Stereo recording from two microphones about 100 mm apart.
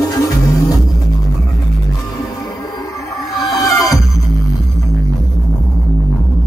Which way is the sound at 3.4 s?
35° left (ahead or behind).